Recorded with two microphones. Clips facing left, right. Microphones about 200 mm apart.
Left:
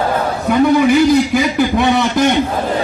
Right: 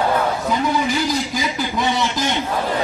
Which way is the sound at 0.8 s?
60° left (ahead or behind).